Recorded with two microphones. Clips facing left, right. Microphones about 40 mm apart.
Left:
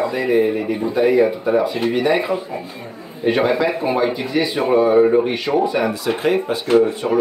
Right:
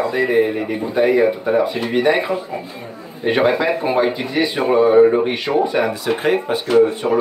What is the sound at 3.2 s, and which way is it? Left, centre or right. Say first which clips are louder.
Speech: right 1 dB; right.